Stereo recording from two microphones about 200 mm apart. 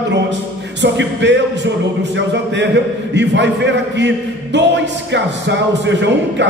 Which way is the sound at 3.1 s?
60° right (ahead or behind).